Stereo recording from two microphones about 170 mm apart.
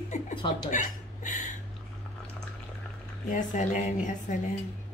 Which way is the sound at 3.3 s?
45° left (ahead or behind).